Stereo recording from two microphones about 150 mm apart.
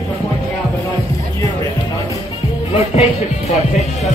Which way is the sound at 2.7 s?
45° left (ahead or behind).